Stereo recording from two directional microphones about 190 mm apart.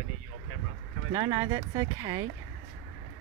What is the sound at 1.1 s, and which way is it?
Speech, 15° right (ahead or behind).